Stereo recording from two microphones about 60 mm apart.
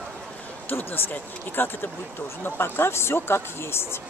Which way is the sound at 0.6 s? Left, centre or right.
Left.